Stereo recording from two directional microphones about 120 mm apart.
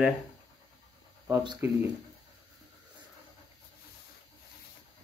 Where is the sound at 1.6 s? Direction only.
20° right (ahead or behind).